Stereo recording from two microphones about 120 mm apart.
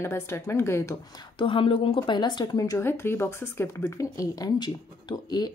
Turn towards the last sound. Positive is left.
turn(degrees=35)  # may be behind; listen again after turning